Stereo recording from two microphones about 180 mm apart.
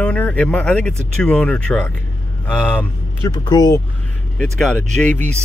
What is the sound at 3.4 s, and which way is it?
Speech, 20° left (ahead or behind).